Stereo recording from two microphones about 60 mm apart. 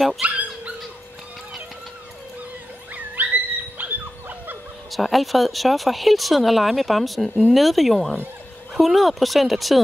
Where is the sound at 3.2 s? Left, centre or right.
Right.